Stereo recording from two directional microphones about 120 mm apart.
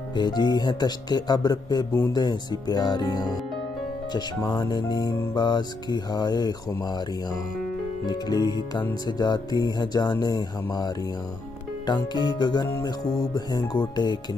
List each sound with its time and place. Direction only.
0.1 s speech: 35° left (ahead or behind)
8.1 s speech: 35° left (ahead or behind)